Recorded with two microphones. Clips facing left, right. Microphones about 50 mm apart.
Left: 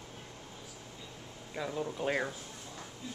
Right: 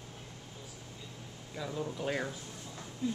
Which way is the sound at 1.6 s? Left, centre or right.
Centre.